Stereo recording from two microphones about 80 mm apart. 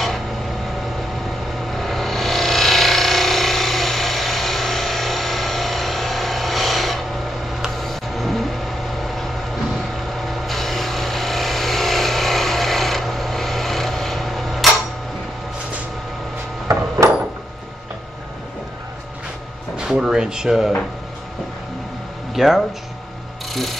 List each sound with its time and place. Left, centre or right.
1.7 s a sound: centre
7.6 s vehicle: centre
10.2 s vehicle: centre
16.6 s a sound: right
19.8 s drawer open or close: centre
22.3 s speech: centre
23.5 s ratchet: centre